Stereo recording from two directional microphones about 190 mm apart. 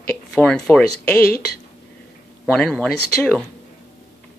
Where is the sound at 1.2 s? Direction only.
55° left (ahead or behind).